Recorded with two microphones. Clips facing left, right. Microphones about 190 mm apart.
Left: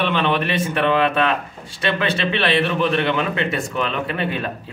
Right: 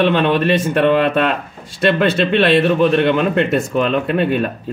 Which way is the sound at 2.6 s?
40° right (ahead or behind).